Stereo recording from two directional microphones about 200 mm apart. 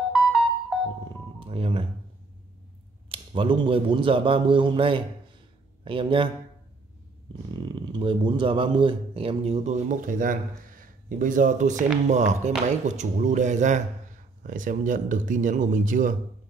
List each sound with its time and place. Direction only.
0.1 s music: centre (ahead or behind)
1.4 s speech: 25° right (ahead or behind)
3.1 s a man's voice: 25° right (ahead or behind)
7.5 s speech: 20° right (ahead or behind); by 16.2 s 40° right (ahead or behind)